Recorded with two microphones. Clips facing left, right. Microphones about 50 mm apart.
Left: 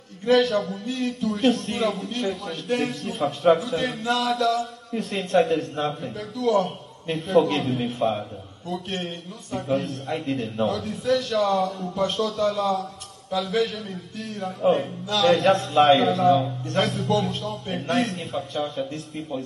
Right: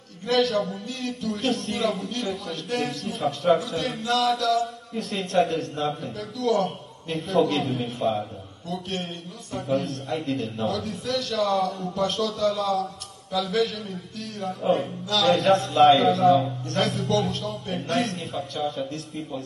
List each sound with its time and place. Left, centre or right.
0.3 s a man's voice: centre